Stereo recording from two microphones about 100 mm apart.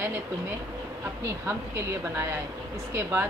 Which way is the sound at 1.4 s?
20° right (ahead or behind).